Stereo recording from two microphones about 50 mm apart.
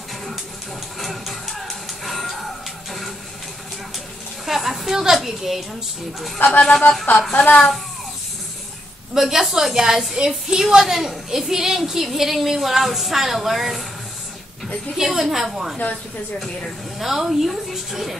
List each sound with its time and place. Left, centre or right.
0.9 s music: centre
4.5 s a woman's voice: centre
6.6 s a woman's voice: centre
9.1 s a woman's voice: centre
15.0 s a woman's voice: centre
17.0 s a woman's voice: centre